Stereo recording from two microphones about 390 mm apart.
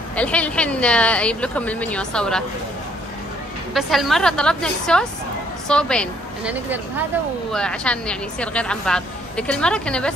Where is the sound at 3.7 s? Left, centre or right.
Centre.